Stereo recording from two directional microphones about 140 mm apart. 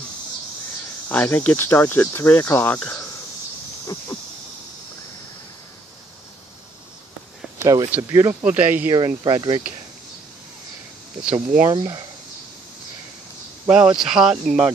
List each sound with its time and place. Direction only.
1.0 s speech: 10° left (ahead or behind)
7.5 s speech: 25° right (ahead or behind)
8.9 s speech: 30° right (ahead or behind)
11.7 s speech: 30° right (ahead or behind)
13.7 s speech: 5° right (ahead or behind)